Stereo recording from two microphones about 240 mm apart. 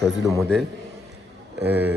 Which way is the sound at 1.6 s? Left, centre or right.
Centre.